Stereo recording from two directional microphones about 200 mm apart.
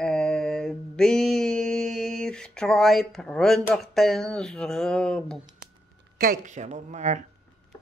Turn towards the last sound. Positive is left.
turn(degrees=-35)  # may be behind; listen again after turning